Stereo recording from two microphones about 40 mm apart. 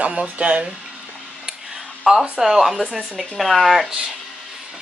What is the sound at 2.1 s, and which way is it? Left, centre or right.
Speech, centre.